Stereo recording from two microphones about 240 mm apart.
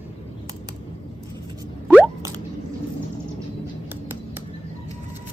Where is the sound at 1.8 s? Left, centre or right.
Centre.